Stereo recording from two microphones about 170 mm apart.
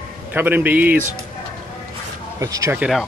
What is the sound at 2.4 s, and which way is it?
Speech, 20° right (ahead or behind).